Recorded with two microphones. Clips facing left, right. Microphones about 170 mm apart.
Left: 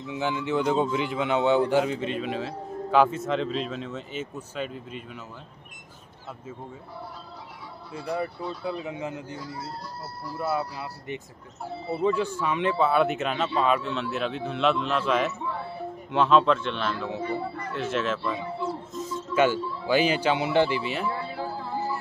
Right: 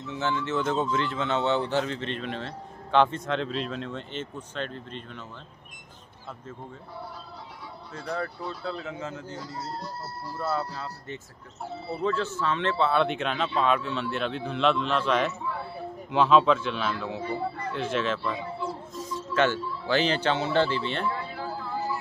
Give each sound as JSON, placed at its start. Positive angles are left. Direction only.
{"t": 0.0, "sound": "a man's voice", "side_deg": 15}
{"t": 7.9, "sound": "a man's voice", "side_deg": 15}